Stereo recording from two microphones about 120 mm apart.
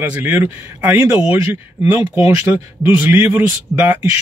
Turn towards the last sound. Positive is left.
turn(degrees=-15)  # may be behind; listen again after turning